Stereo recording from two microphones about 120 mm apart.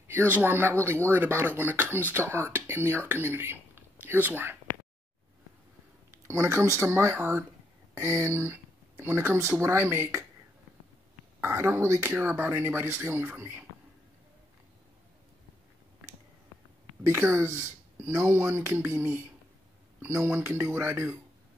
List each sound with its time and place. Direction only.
0.1 s speech: 15° right (ahead or behind)
6.2 s speech: 20° right (ahead or behind)
11.4 s speech: 20° right (ahead or behind)
17.0 s speech: 20° right (ahead or behind)